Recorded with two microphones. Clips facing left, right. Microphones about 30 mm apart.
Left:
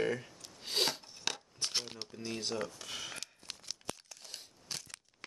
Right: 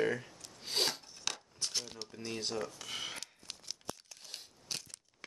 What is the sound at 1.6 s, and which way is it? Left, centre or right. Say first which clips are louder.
Crumpling: left 2 dB; left.